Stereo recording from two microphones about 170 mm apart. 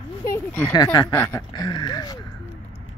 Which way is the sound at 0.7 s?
25° left (ahead or behind).